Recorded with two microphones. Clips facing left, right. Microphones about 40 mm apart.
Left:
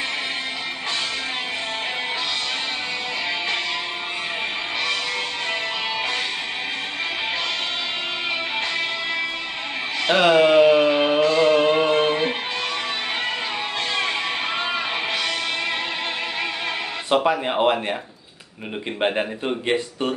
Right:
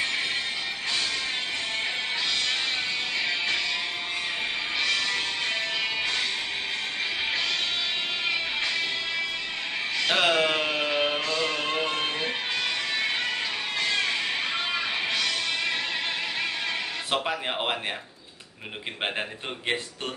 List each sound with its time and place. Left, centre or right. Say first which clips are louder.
10.1 s music: left 9 dB; centre
14.7 s music: left 3 dB; left
17.1 s speech: left 9 dB; centre
18.9 s speech: left 8 dB; centre